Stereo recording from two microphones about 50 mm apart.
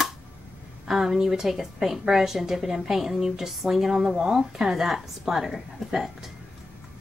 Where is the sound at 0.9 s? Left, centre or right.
Centre.